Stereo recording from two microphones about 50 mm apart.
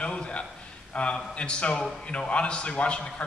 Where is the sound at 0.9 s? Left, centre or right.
Centre.